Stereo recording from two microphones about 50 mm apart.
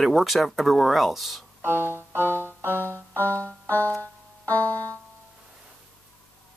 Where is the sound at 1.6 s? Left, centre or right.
Right.